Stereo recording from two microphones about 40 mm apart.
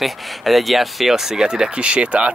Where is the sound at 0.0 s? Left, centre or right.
Centre.